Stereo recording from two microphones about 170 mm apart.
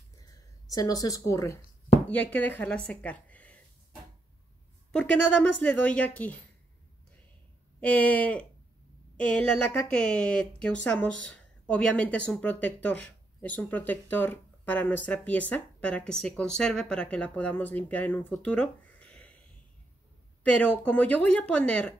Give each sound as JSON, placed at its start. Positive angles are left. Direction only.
{"t": 0.7, "sound": "a woman's voice", "side_deg": 20}
{"t": 4.9, "sound": "speech", "side_deg": 5}
{"t": 7.8, "sound": "speech", "side_deg": 10}
{"t": 20.4, "sound": "speech", "side_deg": 10}